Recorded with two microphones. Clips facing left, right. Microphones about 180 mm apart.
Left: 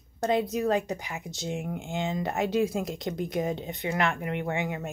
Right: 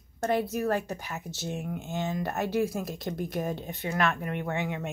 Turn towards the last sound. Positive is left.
turn(degrees=15)  # may be behind; listen again after turning